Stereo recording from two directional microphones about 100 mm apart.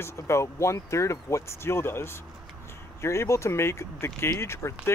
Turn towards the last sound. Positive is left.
turn(degrees=25)  # may be behind; listen again after turning